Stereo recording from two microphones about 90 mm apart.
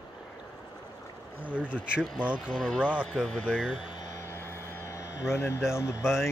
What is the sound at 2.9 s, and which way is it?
Speech, 10° right (ahead or behind).